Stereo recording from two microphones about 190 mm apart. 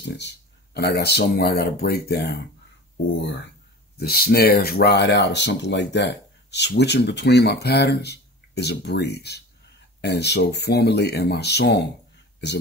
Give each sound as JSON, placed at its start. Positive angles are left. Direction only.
{"t": 0.0, "sound": "speech", "side_deg": 65}
{"t": 3.9, "sound": "speech", "side_deg": 55}